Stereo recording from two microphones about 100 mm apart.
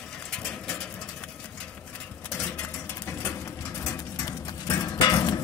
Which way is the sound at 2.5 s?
20° left (ahead or behind).